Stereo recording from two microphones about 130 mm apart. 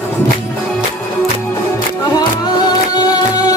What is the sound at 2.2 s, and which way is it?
Music, 30° left (ahead or behind).